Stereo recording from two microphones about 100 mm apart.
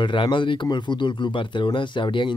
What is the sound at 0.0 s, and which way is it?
Speech, 55° left (ahead or behind).